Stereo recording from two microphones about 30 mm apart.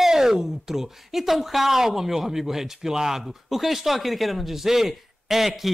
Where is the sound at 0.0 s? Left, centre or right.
Centre.